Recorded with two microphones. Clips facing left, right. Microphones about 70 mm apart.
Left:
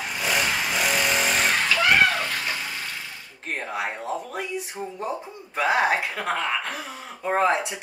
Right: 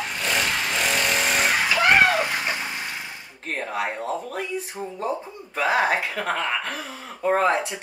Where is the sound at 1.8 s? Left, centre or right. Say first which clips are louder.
Right 3 dB; right.